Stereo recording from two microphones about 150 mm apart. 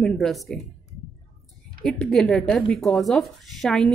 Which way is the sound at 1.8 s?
5° left (ahead or behind).